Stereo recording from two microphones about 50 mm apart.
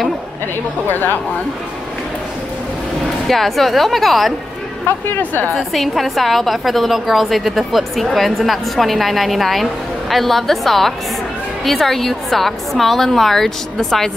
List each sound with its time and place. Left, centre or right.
0.8 s speech: left
3.3 s a woman's voice: centre
4.8 s speech: left
5.6 s a woman's voice: centre